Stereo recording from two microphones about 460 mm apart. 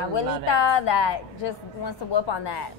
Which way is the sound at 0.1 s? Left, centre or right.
Left.